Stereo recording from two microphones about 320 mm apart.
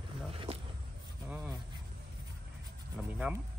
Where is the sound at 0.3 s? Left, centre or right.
Centre.